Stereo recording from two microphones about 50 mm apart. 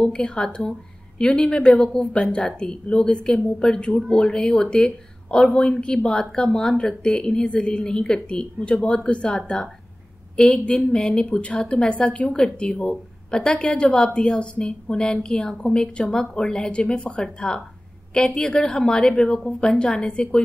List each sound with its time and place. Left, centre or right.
0.0 s a woman's voice: centre